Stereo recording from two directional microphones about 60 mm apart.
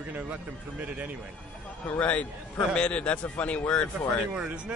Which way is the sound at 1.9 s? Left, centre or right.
Left.